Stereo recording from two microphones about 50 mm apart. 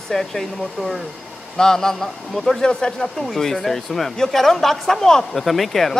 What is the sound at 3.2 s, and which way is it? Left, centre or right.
Speech, centre.